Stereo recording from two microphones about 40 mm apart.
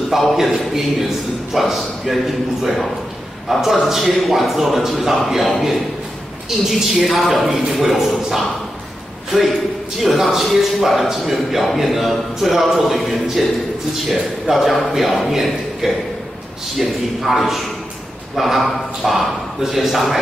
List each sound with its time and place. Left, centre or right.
0.1 s a man's voice: centre
10.0 s a man's voice: centre